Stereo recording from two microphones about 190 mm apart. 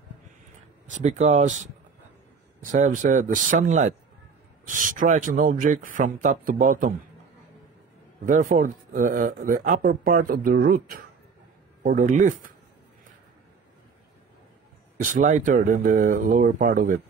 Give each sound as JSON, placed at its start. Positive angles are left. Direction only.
{"t": 0.8, "sound": "speech", "side_deg": -40}
{"t": 2.7, "sound": "speech", "side_deg": -40}
{"t": 8.3, "sound": "speech", "side_deg": -45}
{"t": 11.8, "sound": "speech", "side_deg": -40}
{"t": 15.0, "sound": "speech", "side_deg": -45}